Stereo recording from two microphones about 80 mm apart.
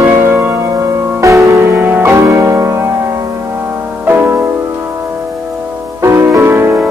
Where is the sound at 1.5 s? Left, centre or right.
Right.